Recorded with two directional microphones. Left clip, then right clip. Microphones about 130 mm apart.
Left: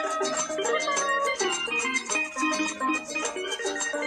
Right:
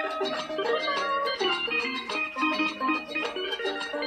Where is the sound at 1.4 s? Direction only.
45° left (ahead or behind).